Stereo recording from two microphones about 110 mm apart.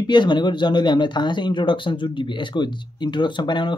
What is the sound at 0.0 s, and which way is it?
Speech, 45° left (ahead or behind).